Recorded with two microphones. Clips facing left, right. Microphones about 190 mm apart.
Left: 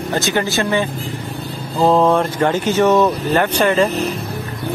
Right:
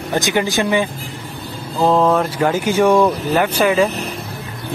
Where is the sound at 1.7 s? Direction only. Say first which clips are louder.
Left 1 dB; centre (ahead or behind).